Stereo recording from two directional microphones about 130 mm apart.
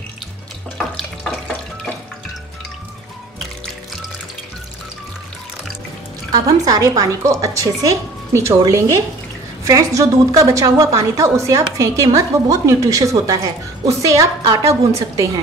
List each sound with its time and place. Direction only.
0.7 s water tap: 5° left (ahead or behind)
6.3 s a woman's voice: 30° right (ahead or behind)